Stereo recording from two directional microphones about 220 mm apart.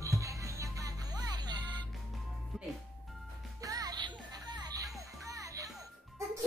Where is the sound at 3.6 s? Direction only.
15° right (ahead or behind).